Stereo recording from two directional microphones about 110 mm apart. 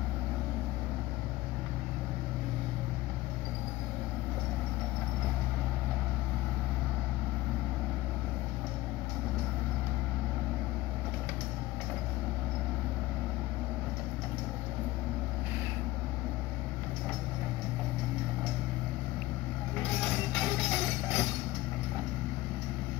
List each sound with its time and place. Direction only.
20.3 s music: 5° left (ahead or behind)